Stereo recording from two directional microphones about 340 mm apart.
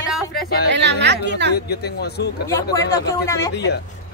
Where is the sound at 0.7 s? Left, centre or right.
Right.